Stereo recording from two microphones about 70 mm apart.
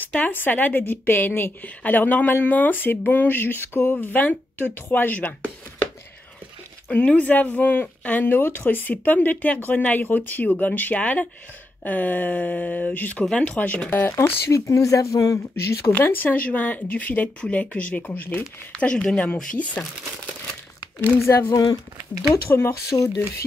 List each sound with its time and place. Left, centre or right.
0.2 s speech: left
6.9 s speech: centre
14.1 s speech: left
15.8 s speech: left
21.3 s speech: left
22.5 s speech: left
22.8 s speech: left